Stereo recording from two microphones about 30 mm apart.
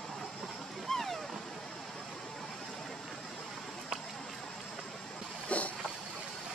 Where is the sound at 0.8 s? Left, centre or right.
Centre.